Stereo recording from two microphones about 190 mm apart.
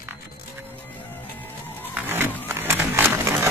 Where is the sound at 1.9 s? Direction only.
10° right (ahead or behind).